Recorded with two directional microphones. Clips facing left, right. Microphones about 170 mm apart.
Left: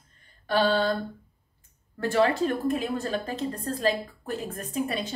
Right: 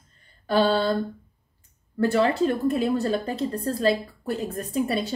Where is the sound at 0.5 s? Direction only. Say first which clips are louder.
Right 2 dB; 35° right (ahead or behind).